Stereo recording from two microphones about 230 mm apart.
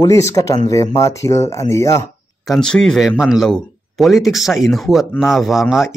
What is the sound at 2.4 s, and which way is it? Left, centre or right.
Speech, centre.